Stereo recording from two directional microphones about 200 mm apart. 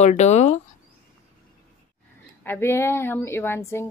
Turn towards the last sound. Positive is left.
turn(degrees=15)  # may be behind; listen again after turning